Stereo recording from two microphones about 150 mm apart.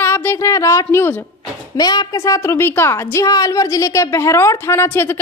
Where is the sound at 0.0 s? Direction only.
15° left (ahead or behind).